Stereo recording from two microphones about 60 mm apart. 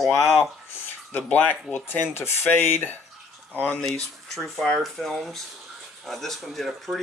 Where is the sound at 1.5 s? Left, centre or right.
Left.